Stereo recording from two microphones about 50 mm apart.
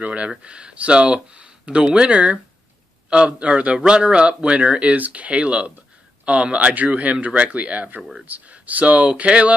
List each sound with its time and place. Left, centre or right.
0.0 s speech: right